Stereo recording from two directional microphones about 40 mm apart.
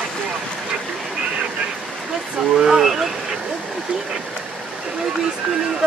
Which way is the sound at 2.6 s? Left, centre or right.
Centre.